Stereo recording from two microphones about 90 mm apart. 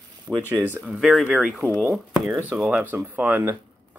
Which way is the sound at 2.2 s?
20° right (ahead or behind).